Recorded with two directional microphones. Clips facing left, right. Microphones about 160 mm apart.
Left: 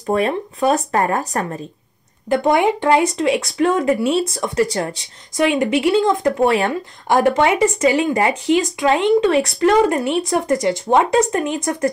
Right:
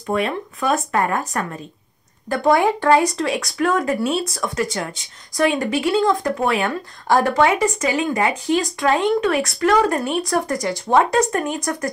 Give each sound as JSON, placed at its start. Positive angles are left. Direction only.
{"t": 0.1, "sound": "speech", "side_deg": 35}
{"t": 2.2, "sound": "speech", "side_deg": 20}
{"t": 5.4, "sound": "speech", "side_deg": 20}
{"t": 6.7, "sound": "speech", "side_deg": 20}